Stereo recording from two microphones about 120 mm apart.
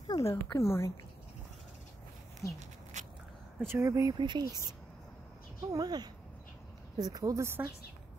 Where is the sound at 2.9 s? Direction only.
80° right.